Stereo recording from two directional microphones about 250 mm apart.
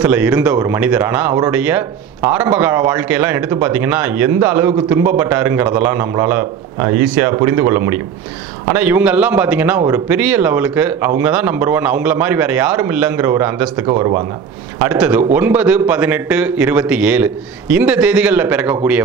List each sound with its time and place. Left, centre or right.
0.0 s a man's voice: centre
14.9 s a man's voice: centre